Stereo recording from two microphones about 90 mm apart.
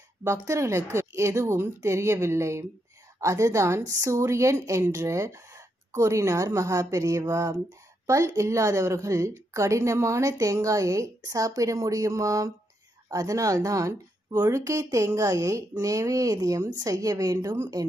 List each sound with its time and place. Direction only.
0.2 s a woman's voice: 30° right (ahead or behind)